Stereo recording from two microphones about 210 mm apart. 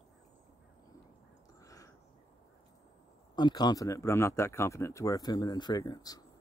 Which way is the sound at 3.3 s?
20° left (ahead or behind).